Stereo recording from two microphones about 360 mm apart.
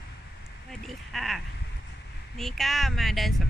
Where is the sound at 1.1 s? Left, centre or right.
Centre.